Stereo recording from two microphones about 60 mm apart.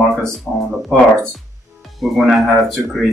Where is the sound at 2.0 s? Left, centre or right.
Centre.